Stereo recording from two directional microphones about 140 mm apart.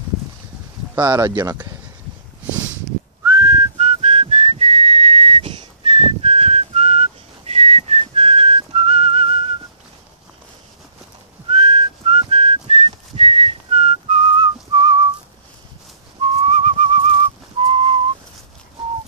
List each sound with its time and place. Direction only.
0.9 s speech: 30° right (ahead or behind)
3.3 s whistling: 35° right (ahead or behind)
11.4 s whistling: 40° right (ahead or behind)
16.2 s whistling: 45° right (ahead or behind)